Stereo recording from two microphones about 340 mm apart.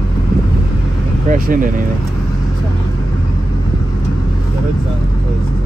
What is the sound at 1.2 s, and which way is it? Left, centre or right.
Vehicle, right.